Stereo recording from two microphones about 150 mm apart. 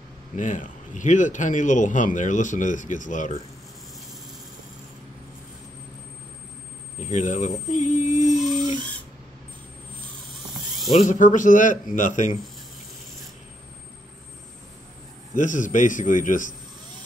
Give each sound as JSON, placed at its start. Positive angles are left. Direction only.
{"t": 0.4, "sound": "a man's voice", "side_deg": 60}
{"t": 7.0, "sound": "speech", "side_deg": 55}
{"t": 8.5, "sound": "a sound", "side_deg": -30}
{"t": 11.0, "sound": "a man's voice", "side_deg": 60}
{"t": 15.3, "sound": "a man's voice", "side_deg": 60}